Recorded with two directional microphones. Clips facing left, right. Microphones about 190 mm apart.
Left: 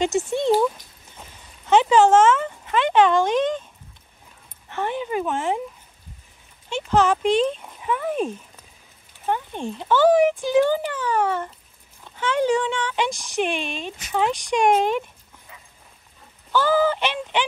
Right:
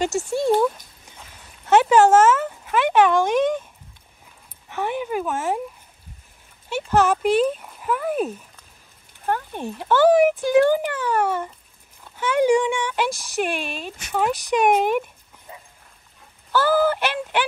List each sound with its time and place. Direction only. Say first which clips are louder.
1.7 s speech: right 1 dB; 5° right (ahead or behind)
4.6 s speech: right 1 dB; 10° right (ahead or behind)
6.7 s speech: even; 10° right (ahead or behind)
9.5 s speech: even; 10° right (ahead or behind)
16.5 s speech: right 1 dB; 10° right (ahead or behind)